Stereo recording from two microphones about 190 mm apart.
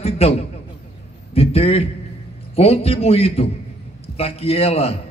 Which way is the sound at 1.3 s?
30° left (ahead or behind).